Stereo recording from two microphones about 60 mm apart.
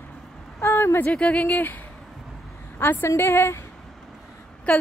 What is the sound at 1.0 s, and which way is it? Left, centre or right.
Speech, centre.